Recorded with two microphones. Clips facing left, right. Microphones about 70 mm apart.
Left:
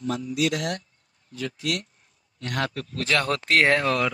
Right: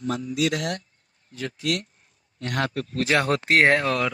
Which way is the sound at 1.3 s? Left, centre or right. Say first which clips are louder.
Right 2 dB; right.